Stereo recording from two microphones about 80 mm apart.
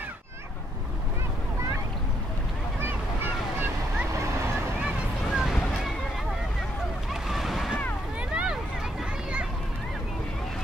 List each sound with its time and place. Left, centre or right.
4.1 s vehicle: right
5.3 s a sound: centre
7.2 s waves: centre
8.3 s vehicle: centre